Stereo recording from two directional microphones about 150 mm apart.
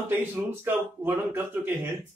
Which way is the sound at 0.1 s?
15° right (ahead or behind).